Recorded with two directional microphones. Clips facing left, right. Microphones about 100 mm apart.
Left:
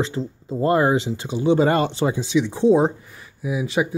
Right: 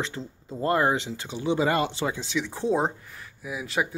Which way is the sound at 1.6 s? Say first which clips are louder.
Left 4 dB; 40° left (ahead or behind).